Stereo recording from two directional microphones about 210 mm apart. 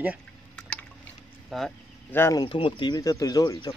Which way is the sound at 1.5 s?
Centre (ahead or behind).